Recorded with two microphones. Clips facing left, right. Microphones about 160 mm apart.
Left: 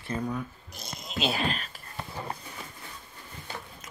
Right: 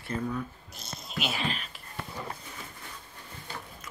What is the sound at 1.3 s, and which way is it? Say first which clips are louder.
Speech: left 3 dB; 45° left (ahead or behind).